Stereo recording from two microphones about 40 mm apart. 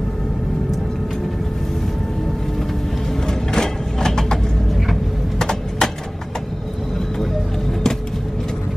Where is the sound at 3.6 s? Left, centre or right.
Centre.